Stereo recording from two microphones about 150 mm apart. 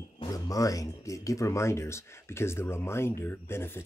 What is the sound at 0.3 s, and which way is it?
Speech, 20° left (ahead or behind).